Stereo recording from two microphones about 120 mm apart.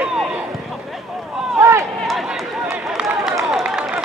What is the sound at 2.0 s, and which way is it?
Run, centre (ahead or behind).